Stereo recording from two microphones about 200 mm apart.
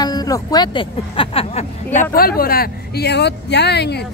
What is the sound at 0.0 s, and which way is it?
Speech, 20° left (ahead or behind).